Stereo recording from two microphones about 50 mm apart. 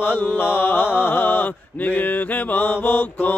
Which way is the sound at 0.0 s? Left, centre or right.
Left.